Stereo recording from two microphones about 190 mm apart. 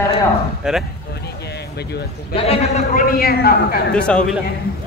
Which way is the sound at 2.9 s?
50° left (ahead or behind).